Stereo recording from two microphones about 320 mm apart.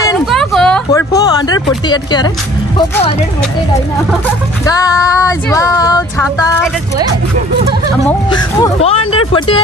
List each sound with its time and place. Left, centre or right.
0.3 s a sound: centre
1.9 s female singing: centre
4.6 s female singing: centre
8.1 s female singing: centre